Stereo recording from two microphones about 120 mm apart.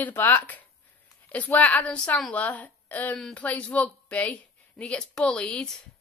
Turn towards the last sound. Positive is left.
turn(degrees=10)  # may be behind; listen again after turning